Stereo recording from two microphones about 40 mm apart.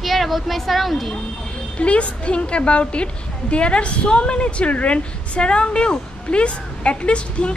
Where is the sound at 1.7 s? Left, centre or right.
Left.